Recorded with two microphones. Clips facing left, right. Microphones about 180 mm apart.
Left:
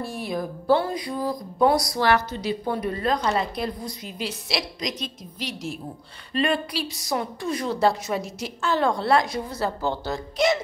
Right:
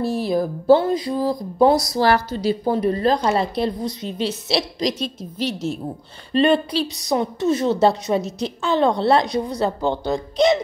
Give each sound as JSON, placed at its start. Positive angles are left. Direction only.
{"t": 0.0, "sound": "speech", "side_deg": -30}